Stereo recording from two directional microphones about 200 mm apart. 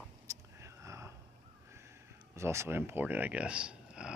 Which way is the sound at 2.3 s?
15° right (ahead or behind).